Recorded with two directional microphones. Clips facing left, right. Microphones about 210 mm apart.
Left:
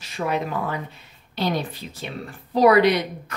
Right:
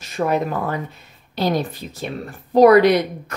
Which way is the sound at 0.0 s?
45° right (ahead or behind).